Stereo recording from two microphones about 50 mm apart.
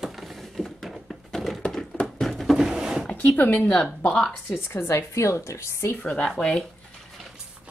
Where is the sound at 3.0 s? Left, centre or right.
Left.